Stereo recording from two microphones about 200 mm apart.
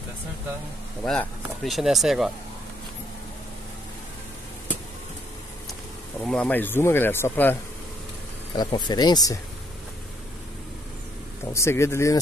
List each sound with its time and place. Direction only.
1.0 s speech: 5° left (ahead or behind)
6.2 s speech: 5° left (ahead or behind)
8.5 s speech: 20° left (ahead or behind)
11.5 s speech: 15° left (ahead or behind)